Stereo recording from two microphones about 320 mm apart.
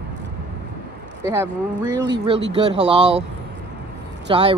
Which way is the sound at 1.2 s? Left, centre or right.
Centre.